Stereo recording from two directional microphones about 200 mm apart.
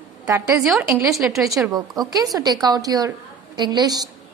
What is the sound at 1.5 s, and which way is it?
A woman's voice, 20° right (ahead or behind).